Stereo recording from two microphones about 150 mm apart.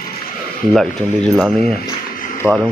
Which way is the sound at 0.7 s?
Centre (ahead or behind).